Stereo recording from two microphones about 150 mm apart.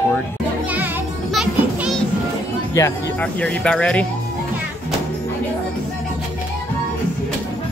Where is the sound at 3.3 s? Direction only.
5° left (ahead or behind).